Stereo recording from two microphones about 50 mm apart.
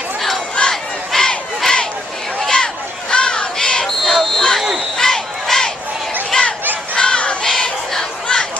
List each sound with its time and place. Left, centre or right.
0.6 s crowd: centre
2.4 s a sound: centre
3.8 s a sound: centre
4.6 s crowd: centre
4.9 s crowd: centre
6.3 s fowl: centre
7.0 s crowd: centre